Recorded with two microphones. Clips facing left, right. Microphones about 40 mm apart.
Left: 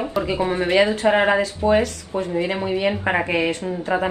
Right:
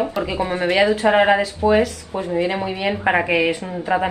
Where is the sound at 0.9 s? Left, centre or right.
Centre.